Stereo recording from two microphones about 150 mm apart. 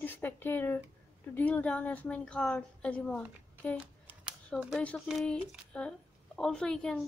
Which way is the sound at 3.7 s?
10° right (ahead or behind).